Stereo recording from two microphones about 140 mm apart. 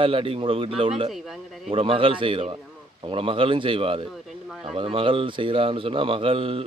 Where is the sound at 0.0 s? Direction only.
40° right (ahead or behind).